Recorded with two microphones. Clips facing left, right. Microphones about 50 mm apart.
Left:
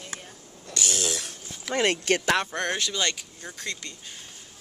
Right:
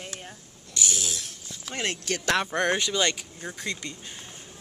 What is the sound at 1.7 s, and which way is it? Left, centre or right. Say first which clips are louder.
Speech: left 7 dB; left.